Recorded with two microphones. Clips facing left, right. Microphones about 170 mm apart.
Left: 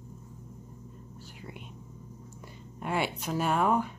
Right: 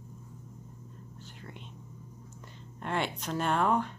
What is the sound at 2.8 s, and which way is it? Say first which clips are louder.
Speech: left 2 dB; 10° left (ahead or behind).